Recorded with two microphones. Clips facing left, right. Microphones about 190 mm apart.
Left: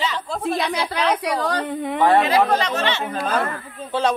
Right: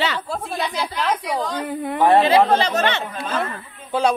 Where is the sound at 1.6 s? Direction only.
5° right (ahead or behind).